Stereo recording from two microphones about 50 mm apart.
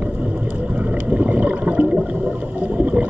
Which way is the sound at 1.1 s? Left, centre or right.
Right.